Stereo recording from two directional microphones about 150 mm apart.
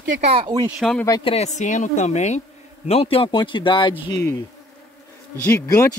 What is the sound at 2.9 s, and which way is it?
A man's voice, 40° left (ahead or behind).